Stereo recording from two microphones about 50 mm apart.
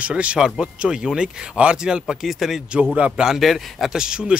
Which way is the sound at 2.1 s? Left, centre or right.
Centre.